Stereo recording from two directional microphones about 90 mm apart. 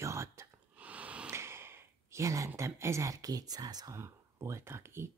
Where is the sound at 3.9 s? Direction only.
30° right (ahead or behind).